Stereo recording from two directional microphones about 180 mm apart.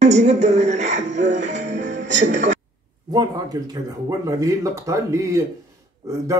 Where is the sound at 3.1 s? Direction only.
20° right (ahead or behind).